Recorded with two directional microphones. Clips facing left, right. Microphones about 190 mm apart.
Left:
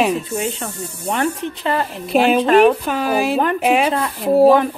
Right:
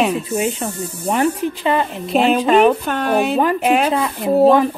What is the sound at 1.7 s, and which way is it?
Speech, centre (ahead or behind).